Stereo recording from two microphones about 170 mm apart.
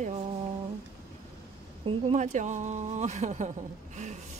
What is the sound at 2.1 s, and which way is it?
Speech, 45° right (ahead or behind).